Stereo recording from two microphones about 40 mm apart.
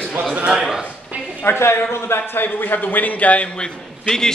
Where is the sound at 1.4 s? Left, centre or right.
Left.